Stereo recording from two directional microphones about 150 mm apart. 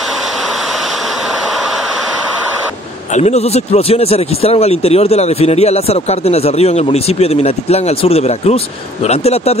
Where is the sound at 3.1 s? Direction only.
45° left (ahead or behind).